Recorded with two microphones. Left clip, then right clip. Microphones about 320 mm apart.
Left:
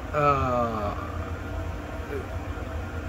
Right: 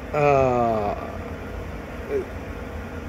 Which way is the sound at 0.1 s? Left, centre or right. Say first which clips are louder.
Right 4 dB; centre.